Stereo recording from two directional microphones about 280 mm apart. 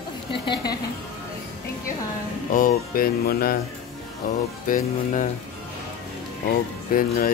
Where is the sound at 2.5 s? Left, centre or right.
Left.